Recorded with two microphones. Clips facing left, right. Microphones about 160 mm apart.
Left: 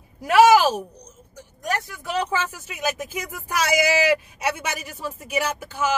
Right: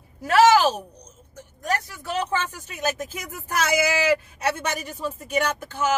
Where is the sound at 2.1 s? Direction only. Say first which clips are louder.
Left 1 dB; 10° left (ahead or behind).